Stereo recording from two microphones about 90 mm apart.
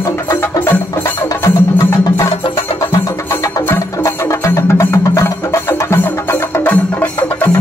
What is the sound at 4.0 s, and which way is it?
Music, 35° left (ahead or behind).